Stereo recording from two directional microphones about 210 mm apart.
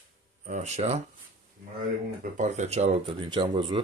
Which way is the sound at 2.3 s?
35° right (ahead or behind).